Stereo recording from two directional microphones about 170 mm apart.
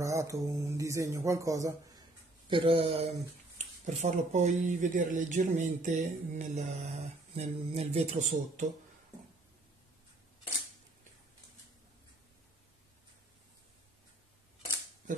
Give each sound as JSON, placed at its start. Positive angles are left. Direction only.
{"t": 0.0, "sound": "speech", "side_deg": -20}
{"t": 2.5, "sound": "speech", "side_deg": -30}